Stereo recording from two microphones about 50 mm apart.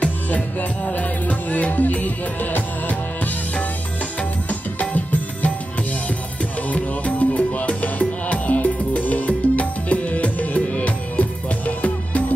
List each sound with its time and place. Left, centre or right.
0.0 s music: left
4.2 s music: left
6.7 s music: left